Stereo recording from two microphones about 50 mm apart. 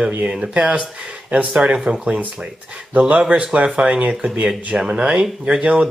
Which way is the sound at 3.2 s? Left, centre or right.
Centre.